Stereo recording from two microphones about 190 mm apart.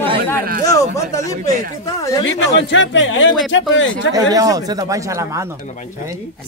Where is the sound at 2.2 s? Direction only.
75° left (ahead or behind).